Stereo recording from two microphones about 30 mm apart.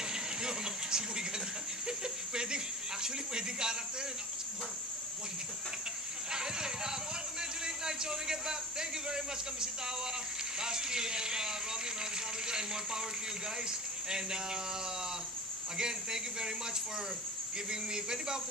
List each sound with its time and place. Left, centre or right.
0.1 s a sound: right
6.3 s speech: right
15.8 s speech: right
17.6 s speech: right